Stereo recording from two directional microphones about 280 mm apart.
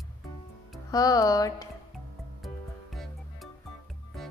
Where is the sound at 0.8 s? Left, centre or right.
Centre.